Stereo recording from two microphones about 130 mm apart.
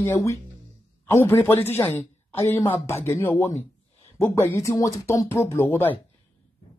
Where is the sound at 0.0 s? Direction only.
20° left (ahead or behind).